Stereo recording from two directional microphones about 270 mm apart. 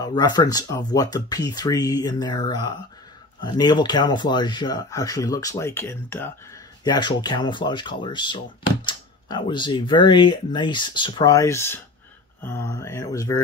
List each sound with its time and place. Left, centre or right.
0.0 s speech: centre